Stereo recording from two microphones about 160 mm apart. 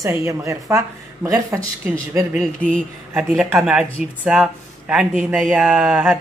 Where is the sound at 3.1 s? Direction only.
5° right (ahead or behind).